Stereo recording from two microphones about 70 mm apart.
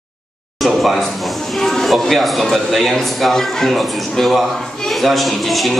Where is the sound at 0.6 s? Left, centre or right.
Centre.